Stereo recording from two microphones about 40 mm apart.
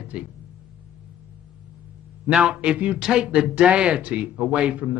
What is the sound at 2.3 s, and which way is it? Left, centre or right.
Speech, right.